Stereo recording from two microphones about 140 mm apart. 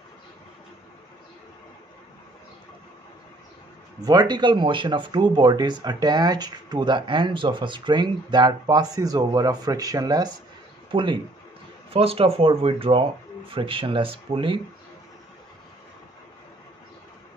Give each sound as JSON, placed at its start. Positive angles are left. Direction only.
{"t": 4.0, "sound": "speech", "side_deg": -30}